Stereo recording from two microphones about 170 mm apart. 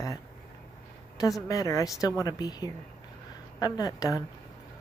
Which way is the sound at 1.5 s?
20° left (ahead or behind).